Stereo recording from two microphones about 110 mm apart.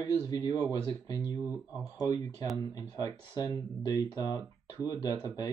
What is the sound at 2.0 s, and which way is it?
Speech, 40° left (ahead or behind).